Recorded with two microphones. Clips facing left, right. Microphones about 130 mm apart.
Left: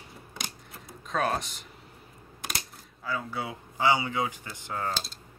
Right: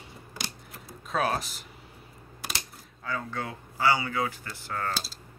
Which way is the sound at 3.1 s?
10° left (ahead or behind).